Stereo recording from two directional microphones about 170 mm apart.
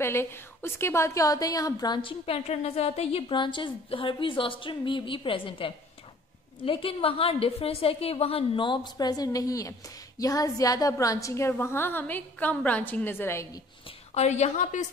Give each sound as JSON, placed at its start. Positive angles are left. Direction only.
{"t": 0.0, "sound": "a woman's voice", "side_deg": 15}
{"t": 13.8, "sound": "a woman's voice", "side_deg": 40}